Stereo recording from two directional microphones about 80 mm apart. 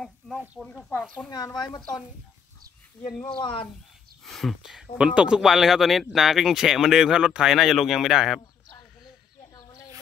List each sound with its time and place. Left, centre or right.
0.6 s speech: centre
1.0 s speech: centre
3.3 s speech: left
4.2 s speech: centre